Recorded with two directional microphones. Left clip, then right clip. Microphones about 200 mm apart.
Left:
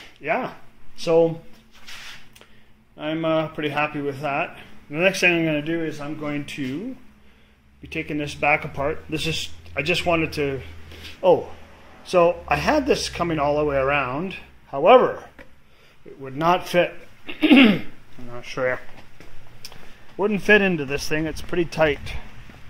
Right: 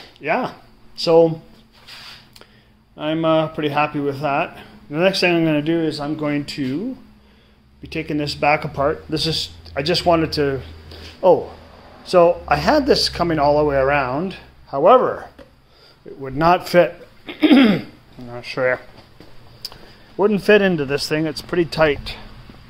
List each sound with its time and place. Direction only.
0.2 s speech: 5° right (ahead or behind)
3.0 s speech: 5° right (ahead or behind)
5.7 s speech: 25° right (ahead or behind)
5.9 s speech: 15° right (ahead or behind)
7.8 s a man's voice: 5° right (ahead or behind)
20.2 s a man's voice: 5° right (ahead or behind)